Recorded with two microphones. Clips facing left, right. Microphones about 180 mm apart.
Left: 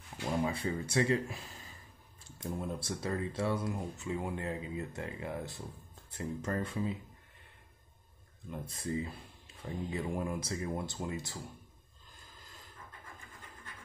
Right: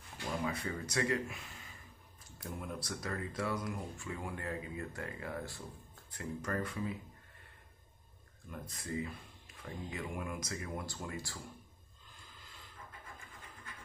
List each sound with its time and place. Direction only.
0.4 s speech: 30° left (ahead or behind)
8.5 s speech: 30° left (ahead or behind)